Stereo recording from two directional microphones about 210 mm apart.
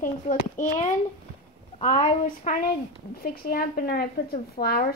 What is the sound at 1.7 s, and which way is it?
Speech, 25° left (ahead or behind).